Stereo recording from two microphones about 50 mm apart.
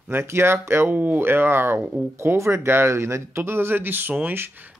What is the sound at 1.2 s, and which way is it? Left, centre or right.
Speech, right.